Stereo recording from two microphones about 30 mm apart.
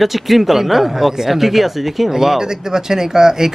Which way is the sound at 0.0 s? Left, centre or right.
Centre.